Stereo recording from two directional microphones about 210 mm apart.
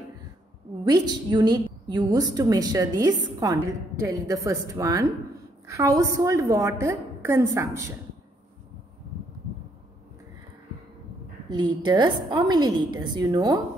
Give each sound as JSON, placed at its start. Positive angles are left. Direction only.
{"t": 0.8, "sound": "a woman's voice", "side_deg": -20}
{"t": 11.4, "sound": "a woman's voice", "side_deg": -20}